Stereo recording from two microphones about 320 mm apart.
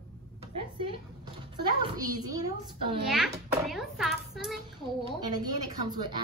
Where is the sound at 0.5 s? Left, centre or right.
Centre.